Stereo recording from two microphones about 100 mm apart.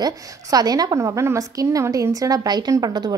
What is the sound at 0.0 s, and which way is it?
A woman's voice, 40° right (ahead or behind).